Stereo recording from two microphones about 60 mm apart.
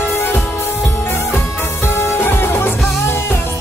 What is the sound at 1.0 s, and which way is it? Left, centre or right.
Music, left.